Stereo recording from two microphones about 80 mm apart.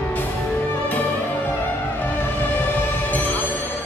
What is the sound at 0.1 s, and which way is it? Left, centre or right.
Music, left.